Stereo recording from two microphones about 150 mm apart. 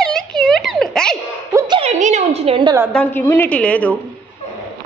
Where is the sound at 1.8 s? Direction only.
45° right (ahead or behind).